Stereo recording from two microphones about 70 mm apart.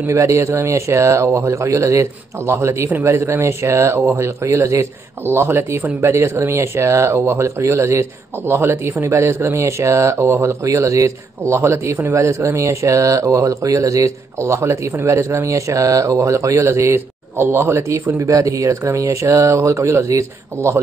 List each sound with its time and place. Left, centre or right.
0.0 s speech: right